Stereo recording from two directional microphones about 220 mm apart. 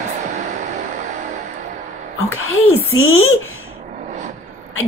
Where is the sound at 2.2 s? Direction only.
70° left (ahead or behind).